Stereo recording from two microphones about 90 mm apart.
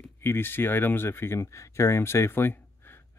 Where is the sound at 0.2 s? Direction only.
25° left (ahead or behind).